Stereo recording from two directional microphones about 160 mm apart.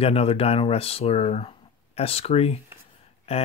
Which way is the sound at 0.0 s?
40° left (ahead or behind).